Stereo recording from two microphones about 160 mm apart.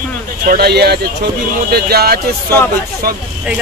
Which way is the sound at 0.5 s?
85° right.